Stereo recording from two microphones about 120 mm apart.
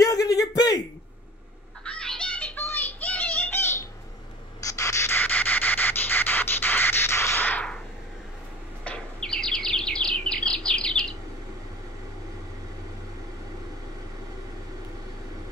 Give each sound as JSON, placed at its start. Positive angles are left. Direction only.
{"t": 0.0, "sound": "a sound", "side_deg": 30}
{"t": 1.9, "sound": "music", "side_deg": 5}
{"t": 4.6, "sound": "rub", "side_deg": 25}
{"t": 8.8, "sound": "bird", "side_deg": 10}